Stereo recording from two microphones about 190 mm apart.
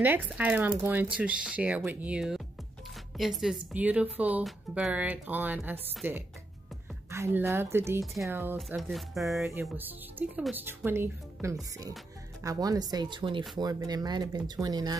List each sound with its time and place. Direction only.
0.0 s speech: 10° right (ahead or behind)
8.5 s speech: centre (ahead or behind); by 15.0 s 20° right (ahead or behind)